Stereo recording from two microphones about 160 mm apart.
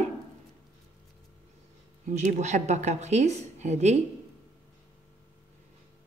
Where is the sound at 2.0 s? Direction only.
50° right (ahead or behind).